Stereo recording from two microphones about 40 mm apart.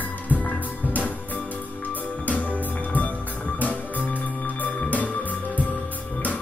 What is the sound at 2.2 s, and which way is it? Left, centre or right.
Music, left.